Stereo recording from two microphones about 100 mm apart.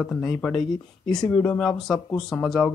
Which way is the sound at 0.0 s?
5° left (ahead or behind).